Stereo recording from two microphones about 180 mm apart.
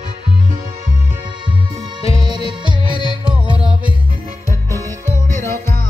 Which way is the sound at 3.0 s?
25° left (ahead or behind).